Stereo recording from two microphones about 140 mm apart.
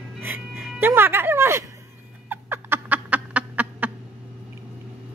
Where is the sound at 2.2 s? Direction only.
15° right (ahead or behind).